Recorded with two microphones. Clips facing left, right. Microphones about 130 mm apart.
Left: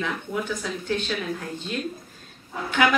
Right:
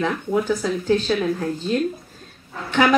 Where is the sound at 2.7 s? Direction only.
35° right (ahead or behind).